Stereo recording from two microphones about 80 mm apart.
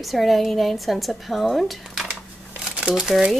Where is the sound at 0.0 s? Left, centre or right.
Centre.